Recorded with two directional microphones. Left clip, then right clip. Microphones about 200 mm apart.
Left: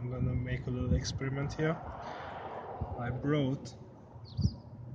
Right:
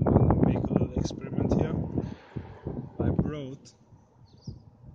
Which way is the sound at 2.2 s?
45° right (ahead or behind).